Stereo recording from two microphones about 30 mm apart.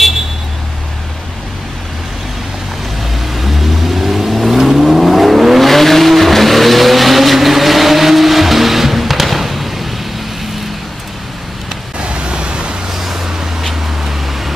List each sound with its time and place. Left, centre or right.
3.3 s vehicle: centre
5.7 s vehicle: centre
12.0 s vehicle: right
12.9 s vehicle: centre